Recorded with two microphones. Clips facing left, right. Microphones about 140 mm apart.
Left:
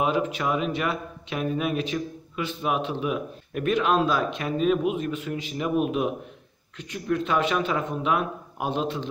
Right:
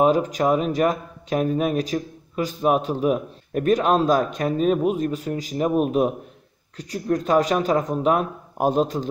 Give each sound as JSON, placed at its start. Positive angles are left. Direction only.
{"t": 0.0, "sound": "speech", "side_deg": -40}